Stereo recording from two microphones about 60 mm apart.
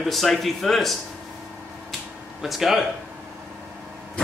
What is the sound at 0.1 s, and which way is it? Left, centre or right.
Speech, centre.